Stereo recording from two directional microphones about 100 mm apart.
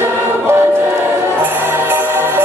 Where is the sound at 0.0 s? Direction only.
25° right (ahead or behind).